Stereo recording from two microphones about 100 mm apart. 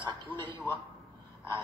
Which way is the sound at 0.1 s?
50° right (ahead or behind).